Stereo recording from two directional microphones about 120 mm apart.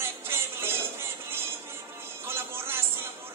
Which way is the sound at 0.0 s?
20° right (ahead or behind).